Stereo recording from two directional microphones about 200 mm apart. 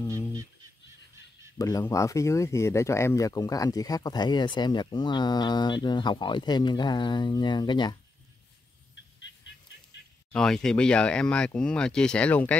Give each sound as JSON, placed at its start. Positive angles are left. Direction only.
{"t": 1.6, "sound": "speech", "side_deg": 15}
{"t": 10.3, "sound": "speech", "side_deg": 5}